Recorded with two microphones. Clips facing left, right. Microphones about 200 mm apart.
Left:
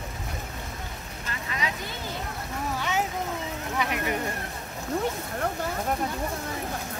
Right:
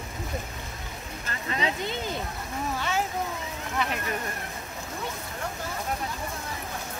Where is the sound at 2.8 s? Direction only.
15° left (ahead or behind).